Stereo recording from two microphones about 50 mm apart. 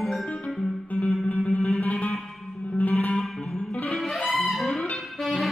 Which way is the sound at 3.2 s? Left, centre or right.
Centre.